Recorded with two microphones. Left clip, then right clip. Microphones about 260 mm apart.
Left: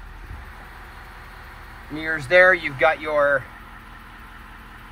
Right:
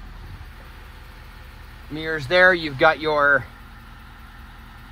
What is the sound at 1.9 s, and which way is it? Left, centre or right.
Speech, centre.